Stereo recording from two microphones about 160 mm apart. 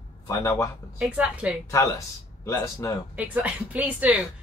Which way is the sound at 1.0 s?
Centre (ahead or behind).